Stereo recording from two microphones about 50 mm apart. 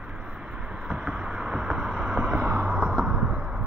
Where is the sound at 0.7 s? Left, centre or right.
Centre.